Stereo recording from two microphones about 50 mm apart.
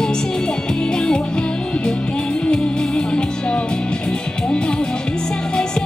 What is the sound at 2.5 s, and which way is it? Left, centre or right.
Music, centre.